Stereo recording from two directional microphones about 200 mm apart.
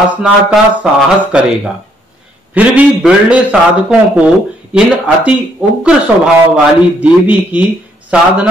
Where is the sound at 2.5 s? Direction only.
5° right (ahead or behind).